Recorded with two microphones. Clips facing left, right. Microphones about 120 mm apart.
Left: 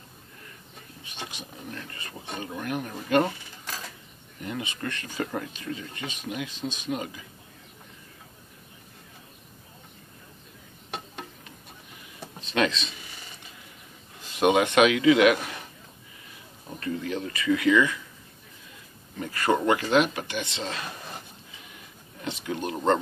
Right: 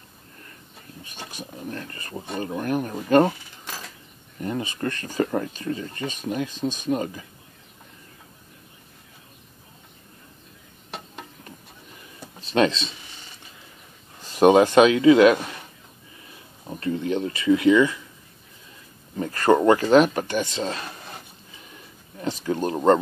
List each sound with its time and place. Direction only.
1.0 s speech: 45° right (ahead or behind)
4.4 s speech: 35° right (ahead or behind)
12.4 s speech: 35° right (ahead or behind)
14.3 s speech: 35° right (ahead or behind)
16.6 s speech: 30° right (ahead or behind)
19.1 s speech: 40° right (ahead or behind)
22.2 s speech: 40° right (ahead or behind)